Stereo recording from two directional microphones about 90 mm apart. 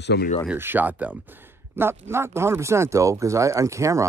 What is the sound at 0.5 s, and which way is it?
Speech, 20° right (ahead or behind).